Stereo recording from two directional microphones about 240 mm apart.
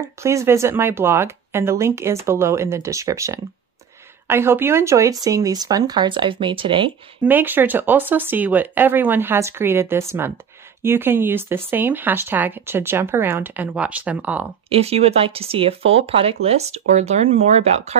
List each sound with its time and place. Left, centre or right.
0.2 s speech: centre
7.2 s speech: centre
14.7 s speech: right